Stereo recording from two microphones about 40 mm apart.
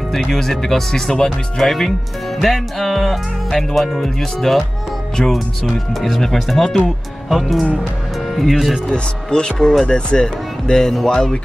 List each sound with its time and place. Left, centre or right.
0.1 s speech: centre
1.6 s music: centre
5.9 s music: centre
8.8 s speech: centre